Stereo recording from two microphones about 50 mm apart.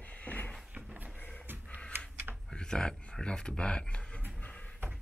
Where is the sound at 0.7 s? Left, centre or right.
Right.